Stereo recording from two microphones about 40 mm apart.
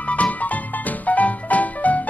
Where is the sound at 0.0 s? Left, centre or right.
Left.